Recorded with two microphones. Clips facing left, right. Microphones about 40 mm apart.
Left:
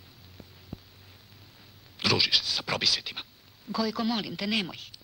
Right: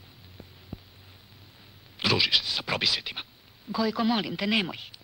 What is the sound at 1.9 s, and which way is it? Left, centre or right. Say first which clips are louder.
Speech: right 1 dB; centre.